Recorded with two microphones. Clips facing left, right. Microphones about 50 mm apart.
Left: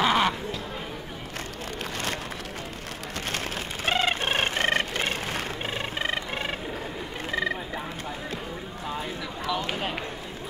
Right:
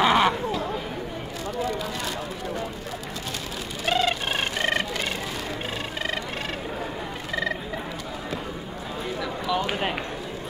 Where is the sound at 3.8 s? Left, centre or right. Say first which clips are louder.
Right 1 dB; left.